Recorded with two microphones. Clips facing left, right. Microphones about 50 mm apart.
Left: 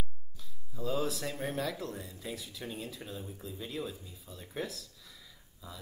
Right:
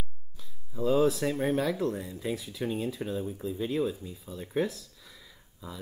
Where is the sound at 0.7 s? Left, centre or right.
Right.